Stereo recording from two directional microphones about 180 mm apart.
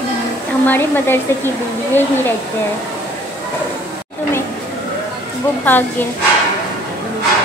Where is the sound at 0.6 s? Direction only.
10° left (ahead or behind).